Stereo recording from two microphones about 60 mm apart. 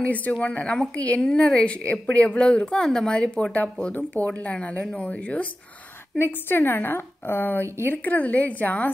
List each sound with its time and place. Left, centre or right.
0.0 s a woman's voice: left
4.2 s a woman's voice: left
6.1 s a woman's voice: left